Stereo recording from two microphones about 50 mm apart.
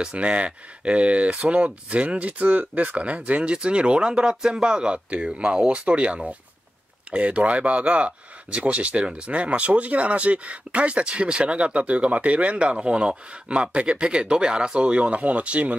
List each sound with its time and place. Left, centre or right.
0.0 s speech: right